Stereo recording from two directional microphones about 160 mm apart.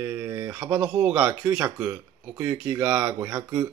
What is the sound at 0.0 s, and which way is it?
Speech, 10° right (ahead or behind).